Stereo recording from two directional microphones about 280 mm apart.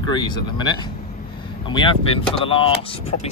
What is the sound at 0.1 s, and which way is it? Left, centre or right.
Speech, centre.